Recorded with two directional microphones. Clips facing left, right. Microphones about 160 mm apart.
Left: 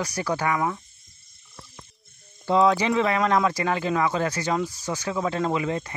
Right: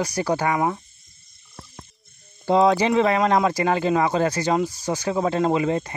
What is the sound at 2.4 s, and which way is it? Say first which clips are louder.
Speech: right 2 dB; 35° right (ahead or behind).